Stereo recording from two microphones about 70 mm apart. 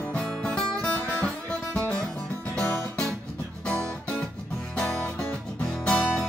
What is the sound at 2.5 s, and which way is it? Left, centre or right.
Music, centre.